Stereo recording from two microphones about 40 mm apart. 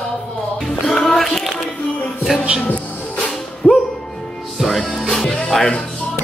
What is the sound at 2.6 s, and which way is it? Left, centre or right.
Music, left.